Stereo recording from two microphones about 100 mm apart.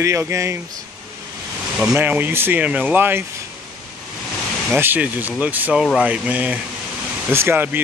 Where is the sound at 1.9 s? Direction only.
20° right (ahead or behind).